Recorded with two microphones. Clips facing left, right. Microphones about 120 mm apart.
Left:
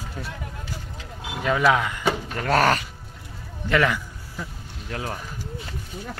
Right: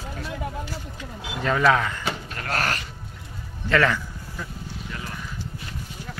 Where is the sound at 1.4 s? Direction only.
10° left (ahead or behind).